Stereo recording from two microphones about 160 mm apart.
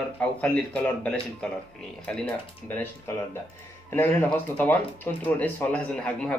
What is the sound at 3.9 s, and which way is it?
Speech, 15° left (ahead or behind).